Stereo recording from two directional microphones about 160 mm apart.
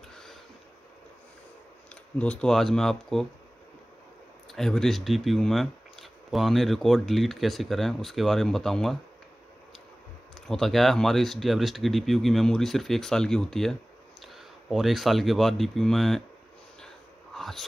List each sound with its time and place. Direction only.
0.1 s a sound: 5° left (ahead or behind)
2.1 s speech: 5° left (ahead or behind)
4.5 s speech: centre (ahead or behind)
10.5 s speech: centre (ahead or behind)
16.8 s whispering: centre (ahead or behind)